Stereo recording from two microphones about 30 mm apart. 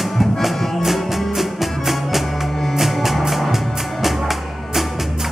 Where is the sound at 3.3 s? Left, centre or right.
Centre.